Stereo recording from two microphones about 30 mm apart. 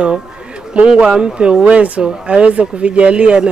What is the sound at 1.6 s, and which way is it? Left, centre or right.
Speech, right.